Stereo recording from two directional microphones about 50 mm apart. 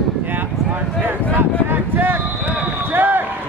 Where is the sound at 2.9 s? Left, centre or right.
Right.